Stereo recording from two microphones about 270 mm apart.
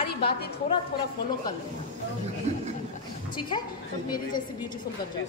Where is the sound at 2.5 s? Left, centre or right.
Right.